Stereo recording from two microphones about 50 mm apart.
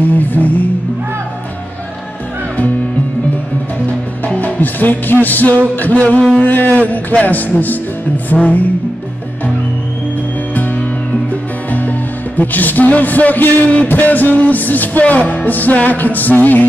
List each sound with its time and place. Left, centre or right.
0.2 s music: left
4.4 s music: left
8.3 s music: centre
10.5 s music: left